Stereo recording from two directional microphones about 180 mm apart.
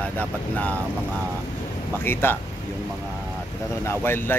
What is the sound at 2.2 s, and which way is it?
Speech, 10° left (ahead or behind).